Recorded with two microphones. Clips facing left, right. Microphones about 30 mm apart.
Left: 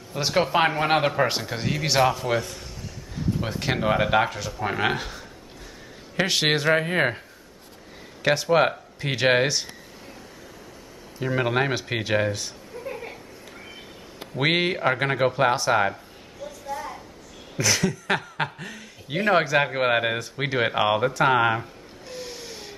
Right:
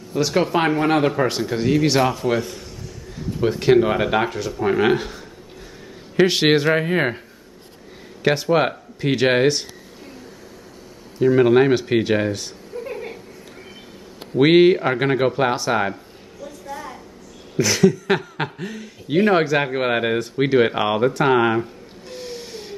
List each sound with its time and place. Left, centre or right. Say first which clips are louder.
0.3 s speech: right 1 dB; centre
0.8 s speech: right 3 dB; left
1.1 s speech: right 3 dB; centre
8.2 s speech: right 2 dB; centre
11.1 s speech: right 9 dB; centre
12.9 s a sound: right 5 dB; centre
14.4 s speech: right 9 dB; centre
16.4 s a sound: even; centre
17.6 s speech: right 7 dB; centre
21.2 s a sound: right 3 dB; centre